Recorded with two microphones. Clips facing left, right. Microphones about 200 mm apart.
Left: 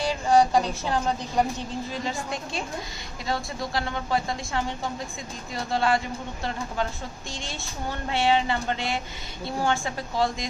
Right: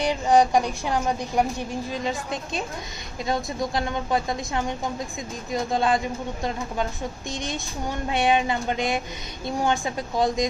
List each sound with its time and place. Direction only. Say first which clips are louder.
0.0 s speech: right 2 dB; 15° right (ahead or behind)
3.3 s speech: right 3 dB; 20° right (ahead or behind)
5.5 s speech: right 2 dB; 20° right (ahead or behind)